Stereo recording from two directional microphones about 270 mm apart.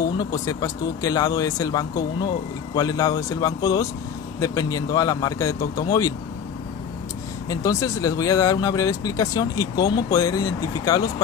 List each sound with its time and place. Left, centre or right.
0.2 s speech: centre
7.4 s speech: centre